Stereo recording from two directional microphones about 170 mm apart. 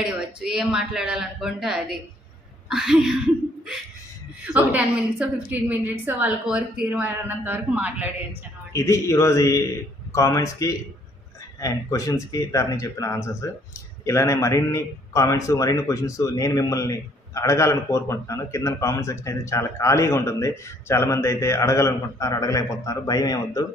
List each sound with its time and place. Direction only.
0.5 s speech: 5° right (ahead or behind)
4.5 s a woman's voice: 5° right (ahead or behind)
8.7 s a man's voice: 15° left (ahead or behind)